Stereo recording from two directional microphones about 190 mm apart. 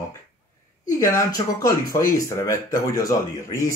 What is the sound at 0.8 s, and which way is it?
Speech, 15° left (ahead or behind).